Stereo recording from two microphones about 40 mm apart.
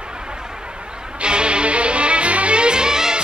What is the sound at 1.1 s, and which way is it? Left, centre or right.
Music, right.